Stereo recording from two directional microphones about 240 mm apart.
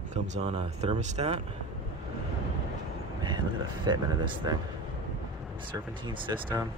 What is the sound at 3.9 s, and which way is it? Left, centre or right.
Speech, centre.